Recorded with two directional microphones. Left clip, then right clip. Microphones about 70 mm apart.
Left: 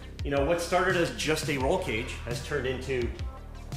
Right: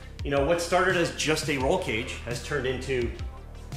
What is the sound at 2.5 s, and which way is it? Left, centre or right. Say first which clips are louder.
Speech: right 2 dB; centre.